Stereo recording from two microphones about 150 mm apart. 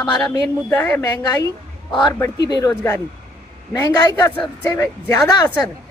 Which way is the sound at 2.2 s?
25° left (ahead or behind).